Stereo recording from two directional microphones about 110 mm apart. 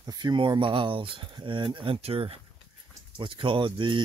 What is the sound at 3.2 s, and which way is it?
Speech, 50° right (ahead or behind).